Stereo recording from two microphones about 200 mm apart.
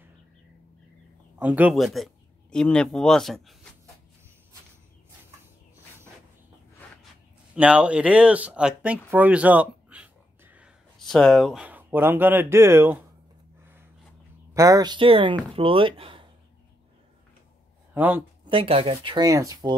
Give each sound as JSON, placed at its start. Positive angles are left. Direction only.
{"t": 1.4, "sound": "speech", "side_deg": -5}
{"t": 7.5, "sound": "speech", "side_deg": -5}
{"t": 14.5, "sound": "speech", "side_deg": -15}
{"t": 17.9, "sound": "speech", "side_deg": -10}
{"t": 18.5, "sound": "speech", "side_deg": -30}